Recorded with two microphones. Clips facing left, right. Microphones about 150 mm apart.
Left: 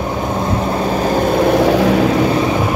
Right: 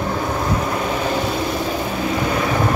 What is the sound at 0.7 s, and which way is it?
Vehicle, 40° left (ahead or behind).